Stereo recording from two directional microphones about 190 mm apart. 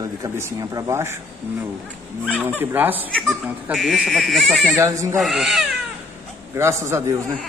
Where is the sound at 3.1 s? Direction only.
Centre (ahead or behind).